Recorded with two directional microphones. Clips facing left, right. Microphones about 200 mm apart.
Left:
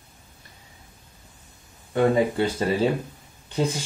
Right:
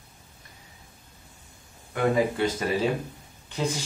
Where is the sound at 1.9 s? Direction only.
30° left (ahead or behind).